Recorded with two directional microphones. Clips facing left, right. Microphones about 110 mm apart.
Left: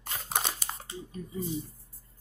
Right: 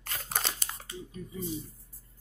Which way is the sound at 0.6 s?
20° left (ahead or behind).